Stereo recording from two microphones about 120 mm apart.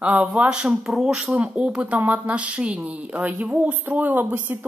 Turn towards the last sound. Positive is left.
turn(degrees=-15)  # may be behind; listen again after turning